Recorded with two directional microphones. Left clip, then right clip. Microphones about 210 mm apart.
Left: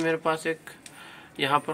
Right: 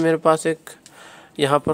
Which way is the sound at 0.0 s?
55° right (ahead or behind).